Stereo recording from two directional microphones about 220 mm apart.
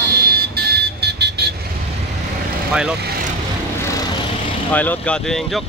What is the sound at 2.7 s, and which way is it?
Vehicle, 5° right (ahead or behind).